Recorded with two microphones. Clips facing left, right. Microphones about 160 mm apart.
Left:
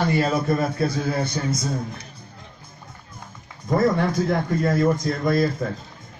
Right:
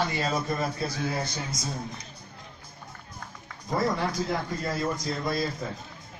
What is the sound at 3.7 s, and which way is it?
Speech, 50° left (ahead or behind).